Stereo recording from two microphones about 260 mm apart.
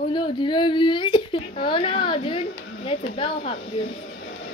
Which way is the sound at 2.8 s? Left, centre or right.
Left.